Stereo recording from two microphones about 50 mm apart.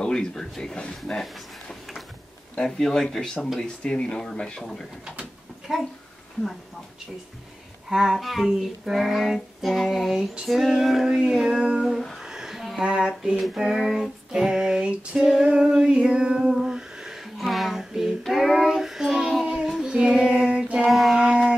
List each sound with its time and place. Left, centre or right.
0.0 s speech: centre
2.5 s speech: centre
5.7 s female singing: centre
7.9 s female singing: centre
8.2 s child singing: centre
10.4 s female singing: centre
12.3 s a sound: centre
12.8 s speech: centre
13.4 s female singing: centre
15.1 s child singing: centre
15.4 s female singing: centre
17.5 s child singing: centre
20.9 s child singing: centre
21.2 s shofar: centre